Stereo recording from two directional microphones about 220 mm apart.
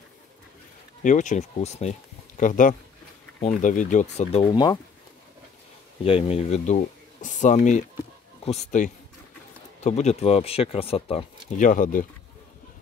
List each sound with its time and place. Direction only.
1.0 s speech: 35° left (ahead or behind); by 4.7 s 20° left (ahead or behind)
6.0 s speech: 25° left (ahead or behind)